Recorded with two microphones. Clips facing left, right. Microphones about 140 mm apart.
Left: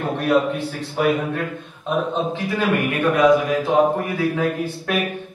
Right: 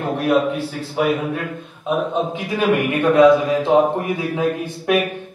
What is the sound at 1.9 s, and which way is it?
Speech, 15° right (ahead or behind).